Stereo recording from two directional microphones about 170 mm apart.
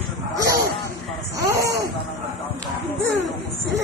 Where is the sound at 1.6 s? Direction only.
90° right.